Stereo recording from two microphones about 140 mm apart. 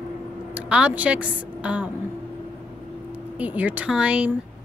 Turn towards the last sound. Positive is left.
turn(degrees=-10)  # may be behind; listen again after turning